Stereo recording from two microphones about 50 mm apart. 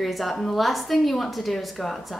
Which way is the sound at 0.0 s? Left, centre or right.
Centre.